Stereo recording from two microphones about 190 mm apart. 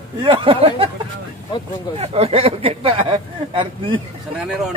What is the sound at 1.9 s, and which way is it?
Speech, 30° right (ahead or behind).